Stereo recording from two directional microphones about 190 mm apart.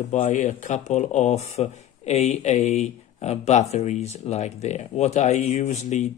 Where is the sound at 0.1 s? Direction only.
40° left (ahead or behind).